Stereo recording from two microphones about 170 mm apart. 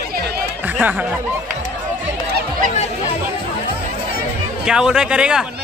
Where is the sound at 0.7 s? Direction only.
10° right (ahead or behind).